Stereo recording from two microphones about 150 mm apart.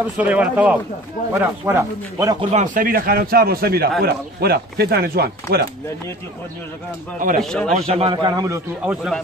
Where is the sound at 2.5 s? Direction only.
60° right (ahead or behind); by 5.7 s 90° right.